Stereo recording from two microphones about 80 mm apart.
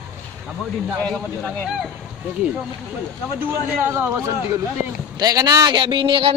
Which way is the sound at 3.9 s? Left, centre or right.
Right.